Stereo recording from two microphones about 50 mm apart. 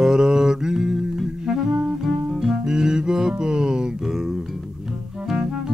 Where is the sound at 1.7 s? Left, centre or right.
Right.